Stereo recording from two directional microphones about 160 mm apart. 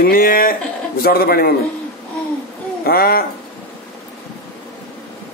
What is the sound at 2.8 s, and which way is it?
Speech, 70° left (ahead or behind).